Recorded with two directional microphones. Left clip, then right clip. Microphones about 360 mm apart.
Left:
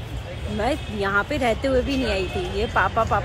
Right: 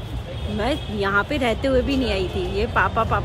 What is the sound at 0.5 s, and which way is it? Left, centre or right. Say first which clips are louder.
A woman's voice: even; centre.